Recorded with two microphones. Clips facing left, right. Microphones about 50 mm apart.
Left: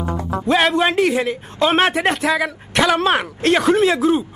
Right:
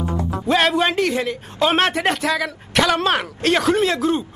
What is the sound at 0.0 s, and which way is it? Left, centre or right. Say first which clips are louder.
Music: left 1 dB; left.